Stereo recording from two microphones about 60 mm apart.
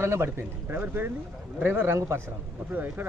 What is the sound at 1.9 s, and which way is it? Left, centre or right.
Speech, right.